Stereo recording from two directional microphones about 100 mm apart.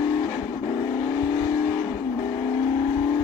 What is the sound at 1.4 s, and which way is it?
Vehicle, 35° left (ahead or behind).